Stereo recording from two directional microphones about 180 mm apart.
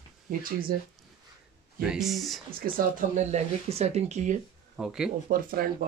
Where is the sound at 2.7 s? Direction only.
40° right (ahead or behind).